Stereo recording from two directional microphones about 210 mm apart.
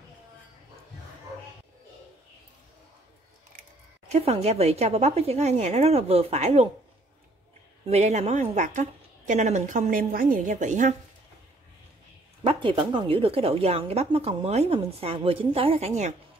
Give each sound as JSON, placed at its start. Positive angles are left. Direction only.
{"t": 4.1, "sound": "speech", "side_deg": -30}
{"t": 7.9, "sound": "a woman's voice", "side_deg": -30}
{"t": 12.4, "sound": "speech", "side_deg": -25}